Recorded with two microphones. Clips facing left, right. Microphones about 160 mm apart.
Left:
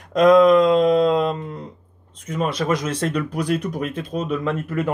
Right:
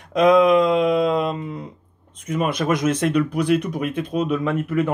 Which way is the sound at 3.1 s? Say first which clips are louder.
Right 3 dB; centre (ahead or behind).